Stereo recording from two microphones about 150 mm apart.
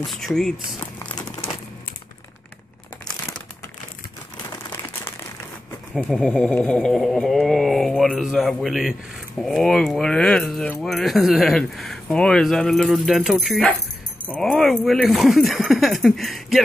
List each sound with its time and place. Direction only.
0.0 s speech: centre (ahead or behind)
4.6 s a sound: 15° left (ahead or behind)
6.0 s speech: 5° left (ahead or behind)